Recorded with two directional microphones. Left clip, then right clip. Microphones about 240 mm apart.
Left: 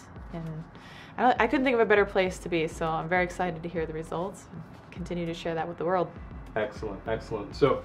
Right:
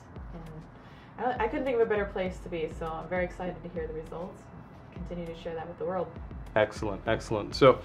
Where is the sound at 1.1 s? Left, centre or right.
Left.